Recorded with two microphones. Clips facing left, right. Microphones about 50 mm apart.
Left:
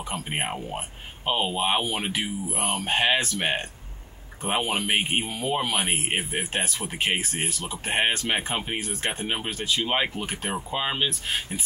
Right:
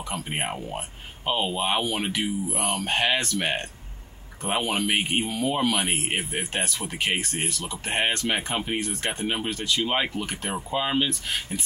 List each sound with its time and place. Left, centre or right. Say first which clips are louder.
0.1 s speech: even; centre
7.8 s speech: left 1 dB; centre
9.6 s speech: right 1 dB; left
9.8 s speech: even; centre